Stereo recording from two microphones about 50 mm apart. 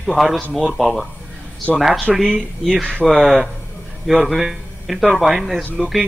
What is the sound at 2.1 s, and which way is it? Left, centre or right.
A man's voice, centre.